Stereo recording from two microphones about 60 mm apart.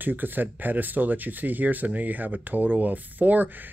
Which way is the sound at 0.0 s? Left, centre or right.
Right.